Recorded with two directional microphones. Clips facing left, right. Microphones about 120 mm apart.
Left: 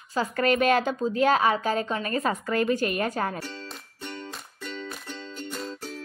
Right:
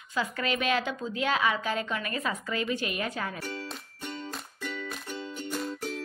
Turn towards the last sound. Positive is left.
turn(degrees=-10)  # may be behind; listen again after turning